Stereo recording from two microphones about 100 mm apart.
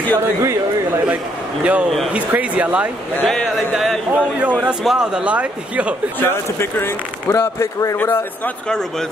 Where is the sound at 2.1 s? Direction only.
15° right (ahead or behind).